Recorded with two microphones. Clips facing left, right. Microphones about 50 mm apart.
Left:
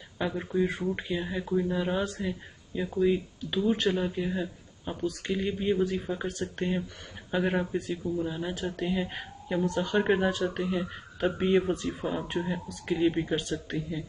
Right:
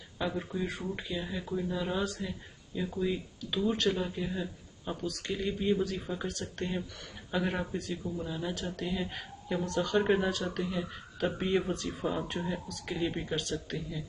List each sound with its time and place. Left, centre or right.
0.4 s speech: centre